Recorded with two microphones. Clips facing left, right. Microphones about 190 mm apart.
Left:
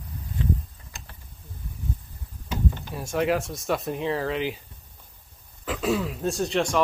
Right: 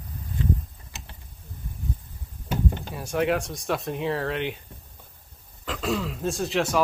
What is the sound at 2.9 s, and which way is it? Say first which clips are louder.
Speech: left 1 dB; centre (ahead or behind).